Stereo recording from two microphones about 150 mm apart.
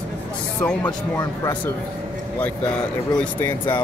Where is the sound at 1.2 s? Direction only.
25° left (ahead or behind).